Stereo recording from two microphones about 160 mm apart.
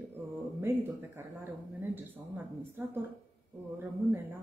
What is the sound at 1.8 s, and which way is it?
A woman's voice, 10° right (ahead or behind).